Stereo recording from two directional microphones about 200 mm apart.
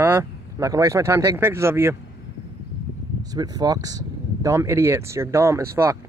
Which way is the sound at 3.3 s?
20° right (ahead or behind).